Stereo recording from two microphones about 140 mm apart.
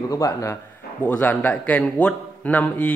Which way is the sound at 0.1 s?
25° left (ahead or behind).